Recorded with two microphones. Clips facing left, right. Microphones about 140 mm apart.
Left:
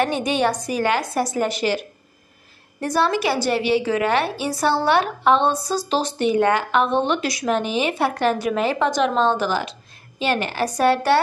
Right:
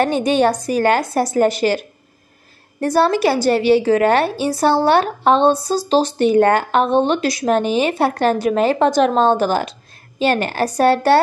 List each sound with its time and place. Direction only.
0.0 s a woman's voice: 35° right (ahead or behind)
2.8 s a woman's voice: 35° right (ahead or behind)